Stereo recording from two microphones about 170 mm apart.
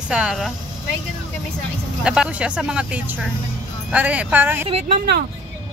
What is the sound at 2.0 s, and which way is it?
Speech, 5° right (ahead or behind).